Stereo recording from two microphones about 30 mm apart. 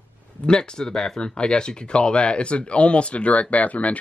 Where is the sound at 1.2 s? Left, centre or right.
Left.